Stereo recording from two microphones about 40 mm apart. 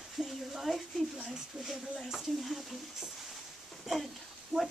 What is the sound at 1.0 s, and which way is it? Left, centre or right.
Speech, centre.